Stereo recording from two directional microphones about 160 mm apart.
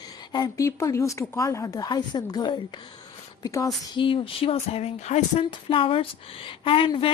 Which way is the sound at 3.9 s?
30° left (ahead or behind).